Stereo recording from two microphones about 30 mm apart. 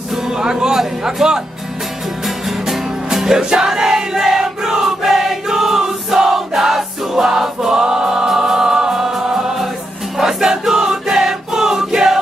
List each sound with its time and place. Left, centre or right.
0.3 s speech: centre
2.2 s music: centre
3.3 s crowd: right
4.2 s a sound: centre
4.8 s choir: centre
9.3 s music: centre
10.1 s choir: centre